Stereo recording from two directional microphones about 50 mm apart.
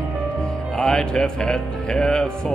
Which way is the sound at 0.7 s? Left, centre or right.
Centre.